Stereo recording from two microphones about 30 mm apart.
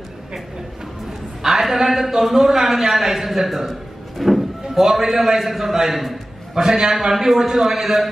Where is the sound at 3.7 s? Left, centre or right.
Centre.